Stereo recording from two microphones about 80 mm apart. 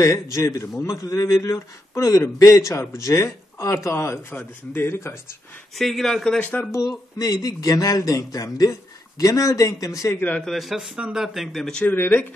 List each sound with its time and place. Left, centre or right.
0.0 s a man's voice: left
5.8 s speech: centre
6.4 s a man's voice: left
6.7 s speech: left
10.4 s speech: centre
11.9 s a man's voice: left